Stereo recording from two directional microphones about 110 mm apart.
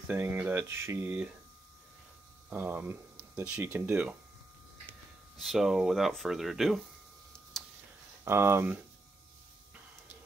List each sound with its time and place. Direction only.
0.1 s speech: 15° right (ahead or behind)
2.5 s speech: 15° right (ahead or behind)
5.4 s speech: centre (ahead or behind)
7.5 s a sound: 5° left (ahead or behind)
8.3 s speech: 20° right (ahead or behind)